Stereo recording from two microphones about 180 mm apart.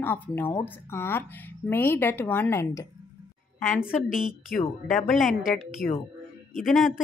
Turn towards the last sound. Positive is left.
turn(degrees=0)  # may be behind; listen again after turning